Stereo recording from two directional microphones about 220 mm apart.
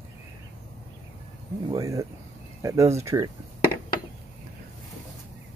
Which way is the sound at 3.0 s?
15° right (ahead or behind).